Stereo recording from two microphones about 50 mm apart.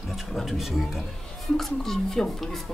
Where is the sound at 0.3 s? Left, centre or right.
Centre.